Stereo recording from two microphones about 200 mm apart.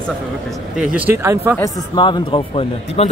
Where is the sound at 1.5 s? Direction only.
20° left (ahead or behind).